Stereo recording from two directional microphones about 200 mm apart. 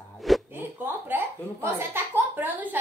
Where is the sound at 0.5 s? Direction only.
10° right (ahead or behind).